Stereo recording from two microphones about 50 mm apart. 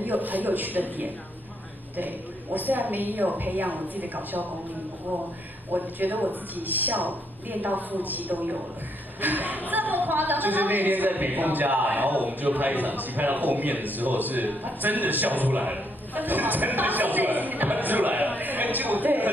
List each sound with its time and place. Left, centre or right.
0.0 s a woman's voice: right
5.7 s a woman's voice: right